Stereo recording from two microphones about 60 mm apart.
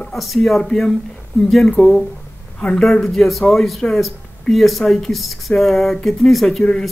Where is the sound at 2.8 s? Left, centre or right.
Centre.